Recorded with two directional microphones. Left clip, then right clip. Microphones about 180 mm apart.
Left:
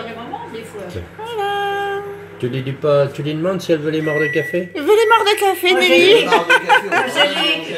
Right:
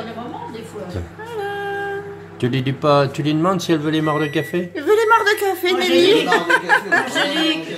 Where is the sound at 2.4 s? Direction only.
35° right (ahead or behind).